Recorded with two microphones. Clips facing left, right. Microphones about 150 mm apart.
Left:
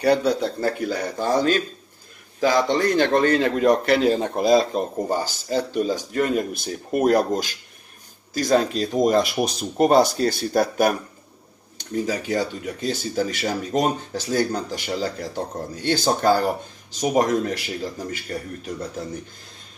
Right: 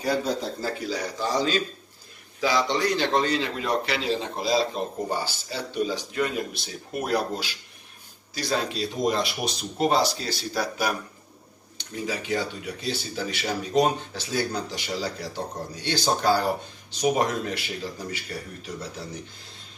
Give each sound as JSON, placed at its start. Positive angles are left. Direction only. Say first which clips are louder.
{"t": 0.0, "sound": "a man's voice", "louder": "left 7 dB", "side_deg": 70}